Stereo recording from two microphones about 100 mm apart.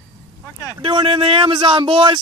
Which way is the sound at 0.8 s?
60° right (ahead or behind).